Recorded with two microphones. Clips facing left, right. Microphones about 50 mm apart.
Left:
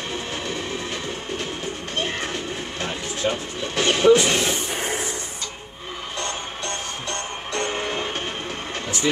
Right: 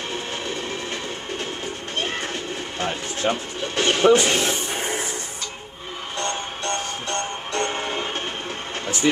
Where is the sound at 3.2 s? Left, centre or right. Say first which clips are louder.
Right 1 dB; right.